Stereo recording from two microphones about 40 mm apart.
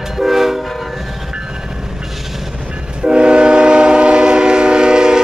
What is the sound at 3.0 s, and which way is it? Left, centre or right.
Train, right.